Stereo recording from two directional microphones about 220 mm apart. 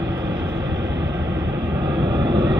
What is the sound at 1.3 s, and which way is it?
Vehicle, 15° right (ahead or behind).